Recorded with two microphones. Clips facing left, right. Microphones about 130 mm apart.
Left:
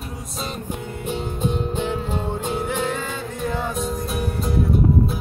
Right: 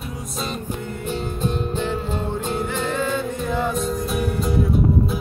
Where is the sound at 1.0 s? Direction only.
15° left (ahead or behind).